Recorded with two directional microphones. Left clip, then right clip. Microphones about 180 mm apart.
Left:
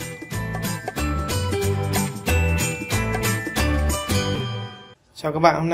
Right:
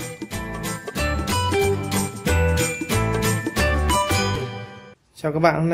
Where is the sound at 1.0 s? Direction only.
Centre (ahead or behind).